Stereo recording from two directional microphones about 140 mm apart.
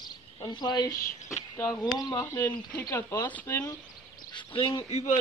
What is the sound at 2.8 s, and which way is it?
Speech, 25° left (ahead or behind).